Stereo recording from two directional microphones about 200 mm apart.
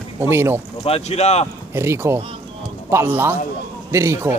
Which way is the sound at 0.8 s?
30° left (ahead or behind).